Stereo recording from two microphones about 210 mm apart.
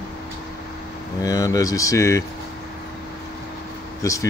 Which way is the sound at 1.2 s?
15° left (ahead or behind).